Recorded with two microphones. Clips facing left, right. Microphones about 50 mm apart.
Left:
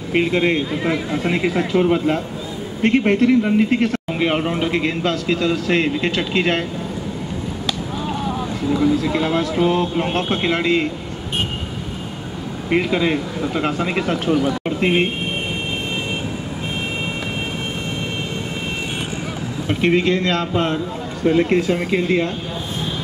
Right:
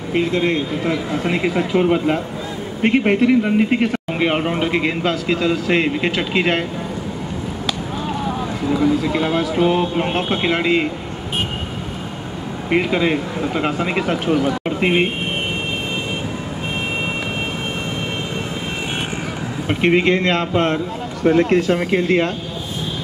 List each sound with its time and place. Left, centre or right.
0.1 s speech: left
1.2 s a man's voice: centre
9.0 s a man's voice: centre
9.7 s a man's voice: centre
12.6 s a man's voice: centre
19.7 s a man's voice: right